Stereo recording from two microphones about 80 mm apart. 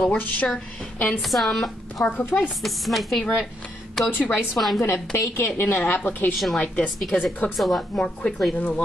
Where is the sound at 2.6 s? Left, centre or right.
Centre.